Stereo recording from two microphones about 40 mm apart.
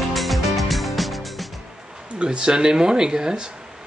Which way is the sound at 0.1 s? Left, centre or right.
Centre.